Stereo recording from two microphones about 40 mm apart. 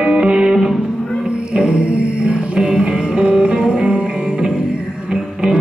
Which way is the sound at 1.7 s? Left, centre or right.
Right.